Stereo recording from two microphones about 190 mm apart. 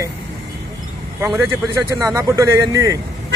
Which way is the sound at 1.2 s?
10° right (ahead or behind).